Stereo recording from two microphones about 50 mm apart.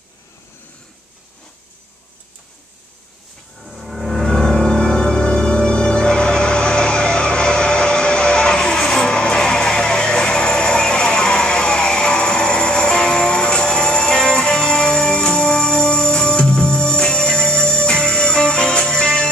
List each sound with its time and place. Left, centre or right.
3.6 s music: centre
4.3 s music: centre